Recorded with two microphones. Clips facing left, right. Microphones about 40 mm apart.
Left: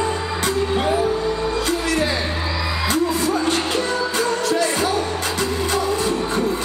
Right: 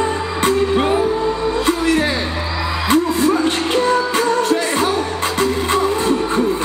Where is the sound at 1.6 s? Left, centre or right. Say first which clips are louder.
Right 6 dB; right.